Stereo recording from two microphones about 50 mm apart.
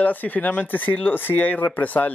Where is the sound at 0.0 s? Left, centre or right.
Left.